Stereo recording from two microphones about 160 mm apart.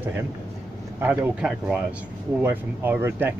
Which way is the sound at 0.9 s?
10° right (ahead or behind).